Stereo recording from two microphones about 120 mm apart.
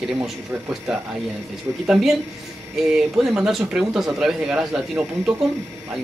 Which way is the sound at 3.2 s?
5° right (ahead or behind).